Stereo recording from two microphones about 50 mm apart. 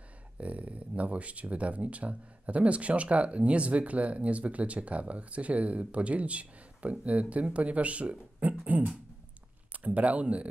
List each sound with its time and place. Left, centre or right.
0.4 s speech: right